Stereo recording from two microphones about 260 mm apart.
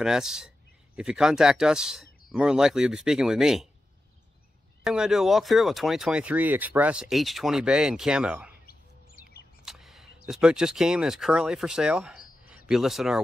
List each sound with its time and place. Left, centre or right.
0.0 s speech: centre
4.8 s speech: centre
8.6 s bird: left
9.7 s speech: centre